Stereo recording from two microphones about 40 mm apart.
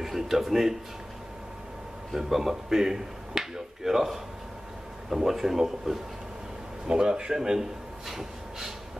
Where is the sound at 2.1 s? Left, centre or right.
Centre.